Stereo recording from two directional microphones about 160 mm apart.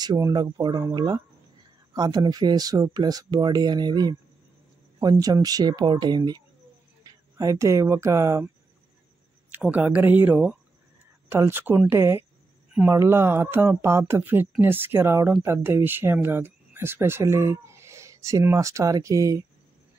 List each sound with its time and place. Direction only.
0.0 s speech: 25° right (ahead or behind)
9.5 s speech: 10° right (ahead or behind)